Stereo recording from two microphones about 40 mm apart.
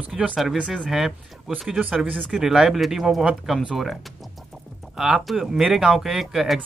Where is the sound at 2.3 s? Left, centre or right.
Centre.